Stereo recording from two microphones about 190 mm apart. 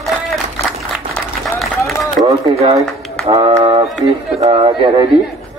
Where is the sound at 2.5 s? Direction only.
25° right (ahead or behind).